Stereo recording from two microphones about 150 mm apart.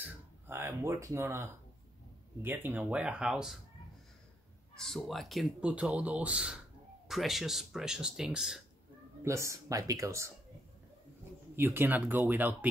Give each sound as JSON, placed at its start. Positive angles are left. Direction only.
{"t": 0.0, "sound": "speech", "side_deg": -15}
{"t": 4.7, "sound": "speech", "side_deg": 0}
{"t": 9.2, "sound": "speech", "side_deg": -20}
{"t": 11.5, "sound": "speech", "side_deg": -15}